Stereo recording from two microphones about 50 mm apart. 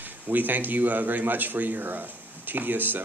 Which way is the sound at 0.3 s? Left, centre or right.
Right.